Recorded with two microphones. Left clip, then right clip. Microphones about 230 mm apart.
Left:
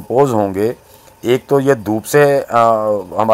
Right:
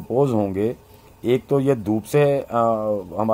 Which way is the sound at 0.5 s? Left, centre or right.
Left.